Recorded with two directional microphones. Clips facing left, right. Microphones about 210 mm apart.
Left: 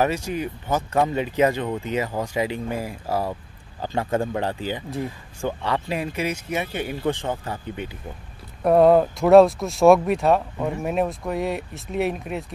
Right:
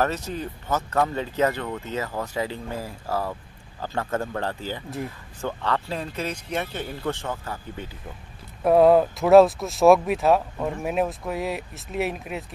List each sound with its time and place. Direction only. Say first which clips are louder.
0.0 s speech: left 3 dB; 10° left (ahead or behind)
8.6 s speech: left 1 dB; centre (ahead or behind)